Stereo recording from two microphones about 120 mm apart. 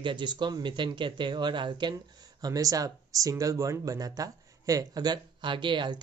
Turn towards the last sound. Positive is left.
turn(degrees=-40)  # may be behind; listen again after turning